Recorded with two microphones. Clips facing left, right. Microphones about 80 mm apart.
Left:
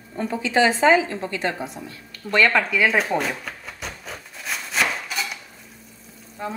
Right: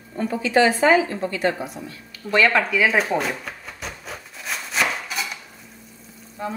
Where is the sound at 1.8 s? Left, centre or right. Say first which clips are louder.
Right 1 dB; centre.